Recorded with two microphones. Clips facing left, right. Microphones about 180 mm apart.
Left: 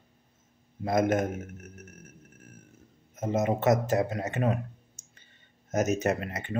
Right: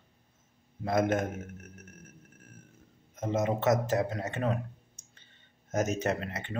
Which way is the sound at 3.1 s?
10° left (ahead or behind).